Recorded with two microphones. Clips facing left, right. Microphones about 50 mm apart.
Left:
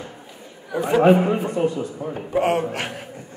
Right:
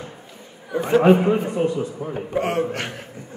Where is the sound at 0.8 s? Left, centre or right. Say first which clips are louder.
Even; centre.